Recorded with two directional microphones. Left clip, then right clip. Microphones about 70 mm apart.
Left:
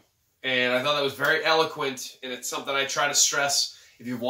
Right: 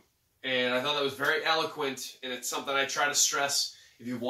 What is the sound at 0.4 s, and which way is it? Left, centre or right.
Speech, centre.